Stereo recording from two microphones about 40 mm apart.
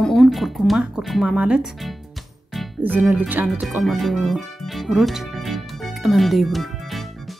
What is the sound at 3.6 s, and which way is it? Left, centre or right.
Music, centre.